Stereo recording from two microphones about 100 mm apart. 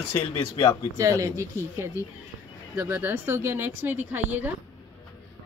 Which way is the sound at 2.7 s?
20° right (ahead or behind).